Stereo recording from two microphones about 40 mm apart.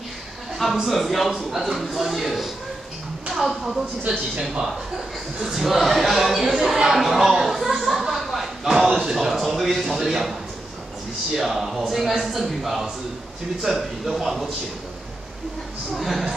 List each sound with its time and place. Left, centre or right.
0.8 s a man's voice: centre
6.9 s a sound: centre
8.8 s a man's voice: centre
9.1 s a man's voice: centre
11.3 s a man's voice: centre
15.9 s a man's voice: centre